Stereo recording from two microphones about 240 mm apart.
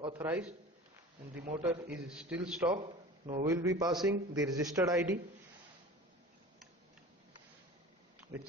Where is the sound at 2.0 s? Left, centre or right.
Centre.